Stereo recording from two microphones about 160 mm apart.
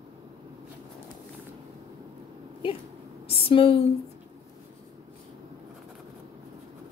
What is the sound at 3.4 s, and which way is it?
Speech, 35° left (ahead or behind).